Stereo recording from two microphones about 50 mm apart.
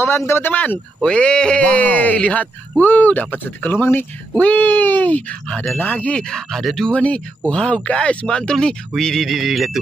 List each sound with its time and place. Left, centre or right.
0.5 s speech: left
1.0 s speech: centre
3.7 s speech: left
4.4 s speech: left
6.5 s speech: centre
6.9 s speech: left; by 9.7 s centre